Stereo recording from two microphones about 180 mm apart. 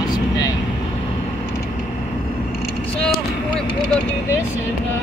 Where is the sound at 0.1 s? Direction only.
20° left (ahead or behind).